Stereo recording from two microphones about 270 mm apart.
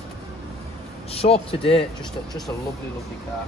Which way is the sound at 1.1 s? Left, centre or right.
Left.